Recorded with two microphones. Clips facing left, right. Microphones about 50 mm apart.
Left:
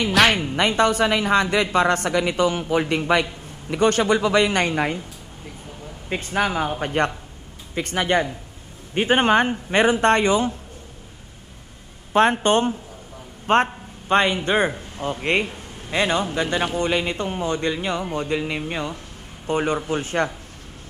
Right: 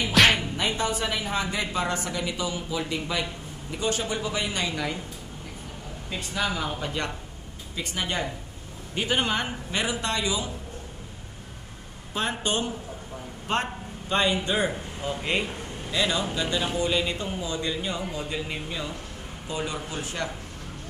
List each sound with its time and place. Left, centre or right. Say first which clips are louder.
0.1 s music: left 2 dB; centre
0.4 s a woman's voice: left 8 dB; left
6.0 s a man's voice: left 6 dB; left
12.1 s a man's voice: left 11 dB; left